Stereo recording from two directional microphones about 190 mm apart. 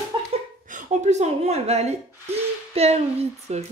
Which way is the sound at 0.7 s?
40° right (ahead or behind).